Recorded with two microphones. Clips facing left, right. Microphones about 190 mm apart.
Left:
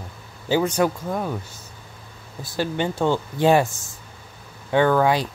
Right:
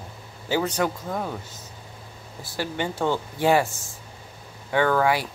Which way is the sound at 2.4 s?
20° left (ahead or behind).